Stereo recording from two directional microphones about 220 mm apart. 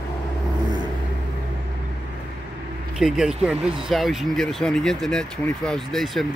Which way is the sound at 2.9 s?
Centre (ahead or behind).